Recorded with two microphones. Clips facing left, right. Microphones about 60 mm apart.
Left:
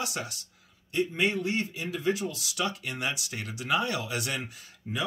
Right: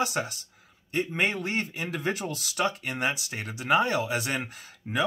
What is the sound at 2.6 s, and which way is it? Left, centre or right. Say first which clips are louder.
Speech: right 4 dB; right.